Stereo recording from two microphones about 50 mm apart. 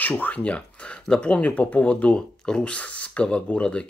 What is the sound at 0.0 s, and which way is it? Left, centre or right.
Speech, left.